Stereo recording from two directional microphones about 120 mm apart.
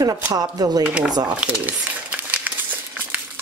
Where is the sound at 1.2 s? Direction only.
10° right (ahead or behind).